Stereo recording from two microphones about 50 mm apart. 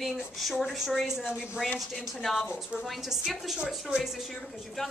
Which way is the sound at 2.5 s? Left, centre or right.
Centre.